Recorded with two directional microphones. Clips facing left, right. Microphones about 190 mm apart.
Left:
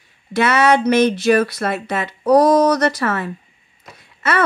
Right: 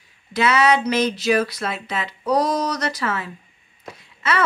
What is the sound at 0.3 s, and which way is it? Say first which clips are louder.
Speech: left 3 dB; 55° left (ahead or behind).